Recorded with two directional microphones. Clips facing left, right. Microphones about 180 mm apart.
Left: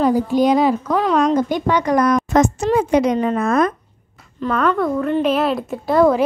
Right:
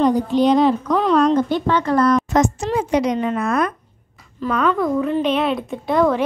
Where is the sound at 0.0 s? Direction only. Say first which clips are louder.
Even; 10° left (ahead or behind).